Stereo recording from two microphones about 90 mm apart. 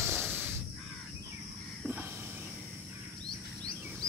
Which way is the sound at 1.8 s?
20° right (ahead or behind).